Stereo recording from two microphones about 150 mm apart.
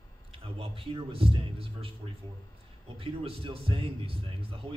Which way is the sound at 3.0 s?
40° right (ahead or behind).